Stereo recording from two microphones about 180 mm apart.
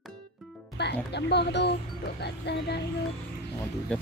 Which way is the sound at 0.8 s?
70° left (ahead or behind).